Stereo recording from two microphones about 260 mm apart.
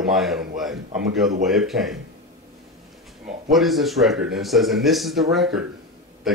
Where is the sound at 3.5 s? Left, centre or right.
Centre.